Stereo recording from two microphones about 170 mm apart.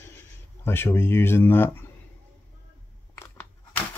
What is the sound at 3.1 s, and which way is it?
Crunch, 15° left (ahead or behind).